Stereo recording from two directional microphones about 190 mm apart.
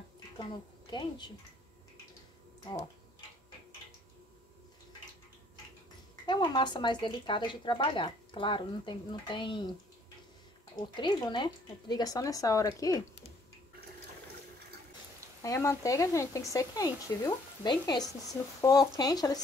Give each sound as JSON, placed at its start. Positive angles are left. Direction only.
{"t": 0.4, "sound": "a woman's voice", "side_deg": 25}
{"t": 6.2, "sound": "speech", "side_deg": 25}
{"t": 10.8, "sound": "speech", "side_deg": 25}
{"t": 15.4, "sound": "speech", "side_deg": 15}